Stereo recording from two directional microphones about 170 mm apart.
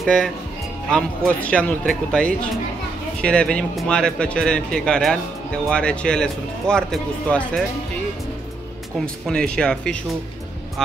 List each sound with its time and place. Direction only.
0.0 s speech: centre (ahead or behind)
9.0 s speech: 5° left (ahead or behind)